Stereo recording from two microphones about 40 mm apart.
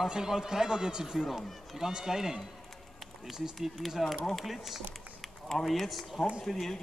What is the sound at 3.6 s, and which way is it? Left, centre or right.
Speech, centre.